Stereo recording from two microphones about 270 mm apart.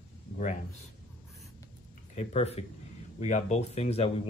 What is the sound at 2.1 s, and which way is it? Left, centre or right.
Speech, left.